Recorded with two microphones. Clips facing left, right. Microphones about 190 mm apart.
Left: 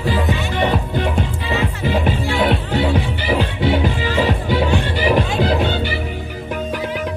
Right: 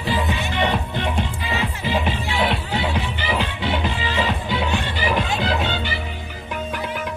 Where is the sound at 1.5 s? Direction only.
45° left (ahead or behind).